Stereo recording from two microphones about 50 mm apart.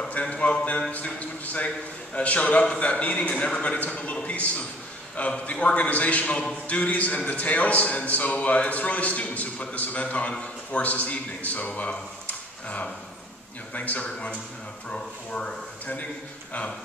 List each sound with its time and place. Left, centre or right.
0.1 s a man's voice: left